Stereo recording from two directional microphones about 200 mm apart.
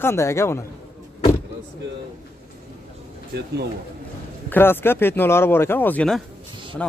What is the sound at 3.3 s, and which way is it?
Speech, 55° right (ahead or behind).